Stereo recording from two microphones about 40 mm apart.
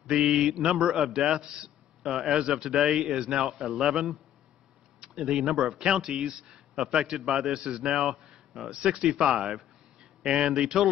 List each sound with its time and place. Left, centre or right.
0.1 s a man's voice: centre
5.3 s a man's voice: centre
9.0 s a man's voice: right
9.3 s a man's voice: centre